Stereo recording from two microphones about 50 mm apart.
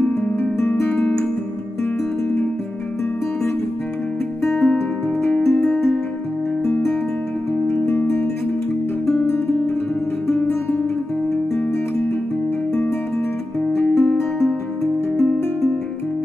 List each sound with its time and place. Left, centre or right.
0.0 s music: left
4.4 s music: centre
5.3 s music: left
6.6 s music: centre
7.7 s music: left
10.5 s guitar: left
13.9 s music: centre